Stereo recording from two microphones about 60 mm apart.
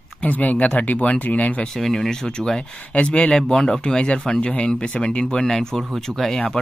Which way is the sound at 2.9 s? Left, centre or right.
Left.